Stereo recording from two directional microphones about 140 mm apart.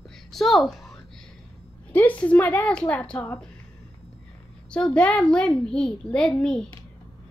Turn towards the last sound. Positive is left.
turn(degrees=5)  # may be behind; listen again after turning